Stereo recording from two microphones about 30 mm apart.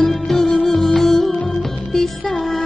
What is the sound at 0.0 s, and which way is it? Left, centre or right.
Music, centre.